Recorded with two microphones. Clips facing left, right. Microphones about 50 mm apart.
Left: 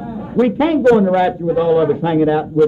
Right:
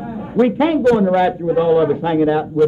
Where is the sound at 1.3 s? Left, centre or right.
Centre.